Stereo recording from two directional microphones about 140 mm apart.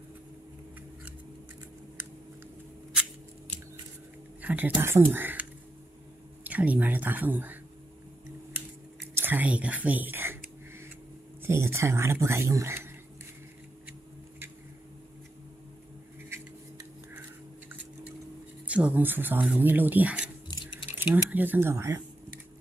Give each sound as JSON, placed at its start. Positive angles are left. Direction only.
{"t": 4.4, "sound": "speech", "side_deg": -10}
{"t": 8.5, "sound": "scissors", "side_deg": -15}
{"t": 9.1, "sound": "speech", "side_deg": -15}
{"t": 11.4, "sound": "speech", "side_deg": -20}
{"t": 18.7, "sound": "speech", "side_deg": -10}